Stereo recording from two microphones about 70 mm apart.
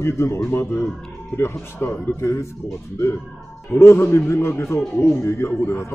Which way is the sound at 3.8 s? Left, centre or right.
Left.